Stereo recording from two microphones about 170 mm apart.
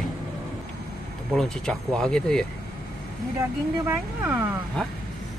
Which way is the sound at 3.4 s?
15° right (ahead or behind).